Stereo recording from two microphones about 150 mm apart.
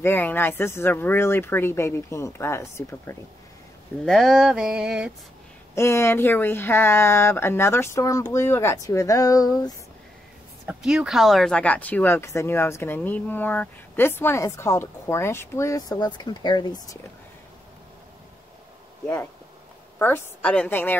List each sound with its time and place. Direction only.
0.0 s speech: 15° left (ahead or behind)
4.0 s a sound: centre (ahead or behind)
5.8 s speech: 20° left (ahead or behind)
10.7 s speech: 5° right (ahead or behind); by 17.0 s 30° left (ahead or behind)
20.0 s speech: 15° left (ahead or behind)